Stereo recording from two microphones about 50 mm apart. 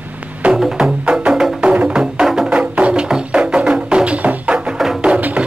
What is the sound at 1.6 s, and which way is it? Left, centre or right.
Music, right.